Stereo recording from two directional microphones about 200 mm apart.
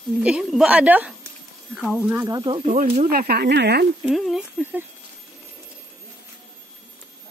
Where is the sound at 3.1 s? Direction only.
50° right (ahead or behind).